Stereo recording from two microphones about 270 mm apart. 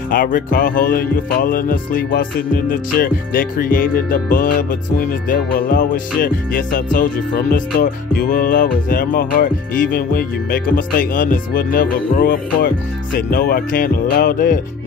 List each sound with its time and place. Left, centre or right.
0.1 s music: left